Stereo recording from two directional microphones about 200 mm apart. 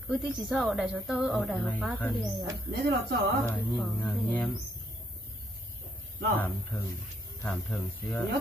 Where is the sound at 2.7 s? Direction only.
50° right (ahead or behind).